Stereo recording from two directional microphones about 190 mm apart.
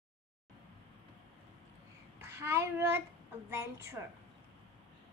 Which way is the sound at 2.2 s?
15° right (ahead or behind).